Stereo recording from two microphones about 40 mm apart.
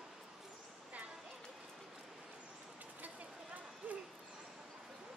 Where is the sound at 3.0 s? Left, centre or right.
Right.